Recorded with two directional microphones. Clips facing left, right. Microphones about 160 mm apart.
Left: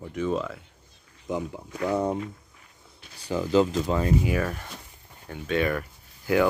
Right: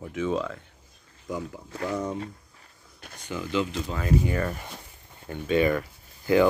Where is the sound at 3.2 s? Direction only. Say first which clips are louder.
Left 6 dB; 35° left (ahead or behind).